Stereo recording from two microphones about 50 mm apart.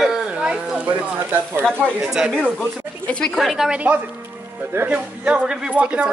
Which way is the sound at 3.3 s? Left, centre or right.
Centre.